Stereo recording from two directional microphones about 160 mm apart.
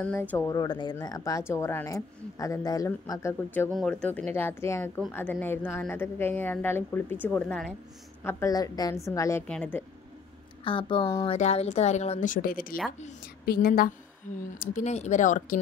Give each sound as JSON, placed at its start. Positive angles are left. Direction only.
{"t": 0.0, "sound": "speech", "side_deg": 10}
{"t": 0.5, "sound": "speech", "side_deg": 25}
{"t": 8.2, "sound": "speech", "side_deg": 15}
{"t": 10.6, "sound": "a woman's voice", "side_deg": 30}
{"t": 14.6, "sound": "speech", "side_deg": 50}